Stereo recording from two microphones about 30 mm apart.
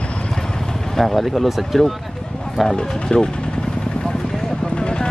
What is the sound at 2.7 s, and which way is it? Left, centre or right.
Speech, left.